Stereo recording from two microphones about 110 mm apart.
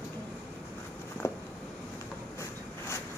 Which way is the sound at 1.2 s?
25° left (ahead or behind).